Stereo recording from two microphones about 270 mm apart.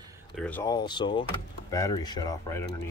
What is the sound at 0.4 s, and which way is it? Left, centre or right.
Speech, centre.